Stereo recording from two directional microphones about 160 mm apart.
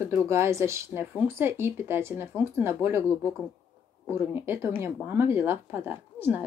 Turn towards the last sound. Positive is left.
turn(degrees=-15)  # may be behind; listen again after turning